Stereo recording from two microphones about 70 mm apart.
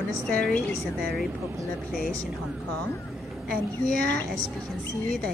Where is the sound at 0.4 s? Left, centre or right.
Centre.